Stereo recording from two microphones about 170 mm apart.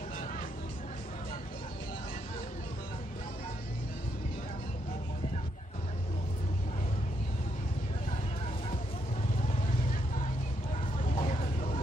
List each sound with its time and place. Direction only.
11.1 s vehicle: 35° left (ahead or behind)